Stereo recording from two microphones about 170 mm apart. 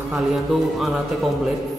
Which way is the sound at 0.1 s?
Centre (ahead or behind).